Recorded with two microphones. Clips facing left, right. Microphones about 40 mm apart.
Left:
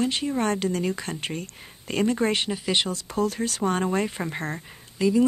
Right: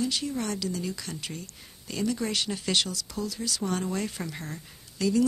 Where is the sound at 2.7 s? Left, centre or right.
Left.